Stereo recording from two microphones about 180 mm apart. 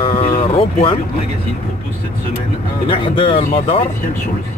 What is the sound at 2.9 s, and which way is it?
Speech, 30° left (ahead or behind).